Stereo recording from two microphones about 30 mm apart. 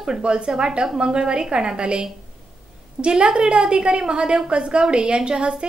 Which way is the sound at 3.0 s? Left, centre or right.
Right.